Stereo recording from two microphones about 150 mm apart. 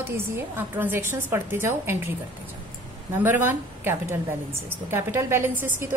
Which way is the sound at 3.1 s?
15° right (ahead or behind).